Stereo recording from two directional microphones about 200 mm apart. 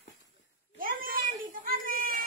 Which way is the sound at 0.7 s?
45° right (ahead or behind).